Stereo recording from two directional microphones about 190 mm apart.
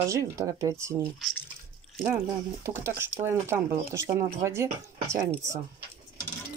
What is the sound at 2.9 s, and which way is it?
Speech, 15° right (ahead or behind).